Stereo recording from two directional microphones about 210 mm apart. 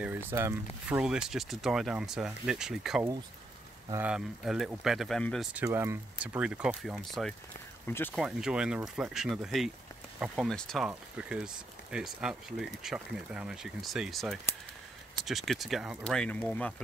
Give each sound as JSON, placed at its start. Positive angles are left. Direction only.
{"t": 0.0, "sound": "speech", "side_deg": -10}
{"t": 7.8, "sound": "speech", "side_deg": 10}
{"t": 8.1, "sound": "speech", "side_deg": 0}